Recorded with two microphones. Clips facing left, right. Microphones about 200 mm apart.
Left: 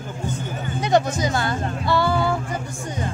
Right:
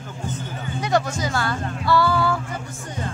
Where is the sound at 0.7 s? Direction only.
20° left (ahead or behind).